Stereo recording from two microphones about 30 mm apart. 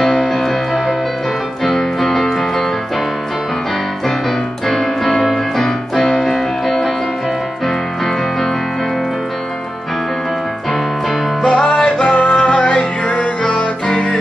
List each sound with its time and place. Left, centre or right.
0.1 s music: left
0.4 s music: centre
4.6 s music: centre
5.6 s keyboard: centre
7.6 s music: centre
11.4 s music: left
12.1 s music: left
13.8 s music: centre